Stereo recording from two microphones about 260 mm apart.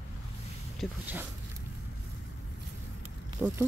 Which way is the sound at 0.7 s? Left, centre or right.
Centre.